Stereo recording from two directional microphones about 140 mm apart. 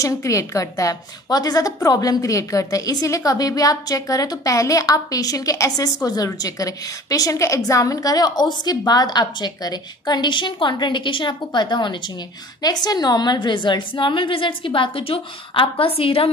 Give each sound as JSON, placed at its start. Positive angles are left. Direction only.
{"t": 0.0, "sound": "a woman's voice", "side_deg": 20}